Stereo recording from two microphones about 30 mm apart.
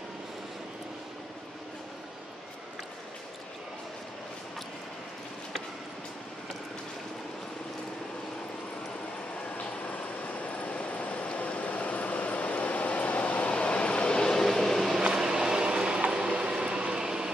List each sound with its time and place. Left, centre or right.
9.6 s vehicle: left
10.7 s train: left
14.4 s vehicle: centre
14.8 s a sound: centre; by 16.0 s right
16.3 s vehicle: right
17.0 s vehicle: centre